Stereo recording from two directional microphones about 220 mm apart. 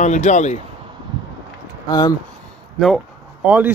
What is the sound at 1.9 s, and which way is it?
Speech, 20° left (ahead or behind).